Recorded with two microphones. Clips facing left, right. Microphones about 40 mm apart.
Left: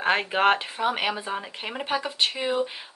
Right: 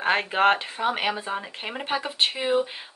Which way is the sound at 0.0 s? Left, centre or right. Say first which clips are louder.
Right 1 dB; centre.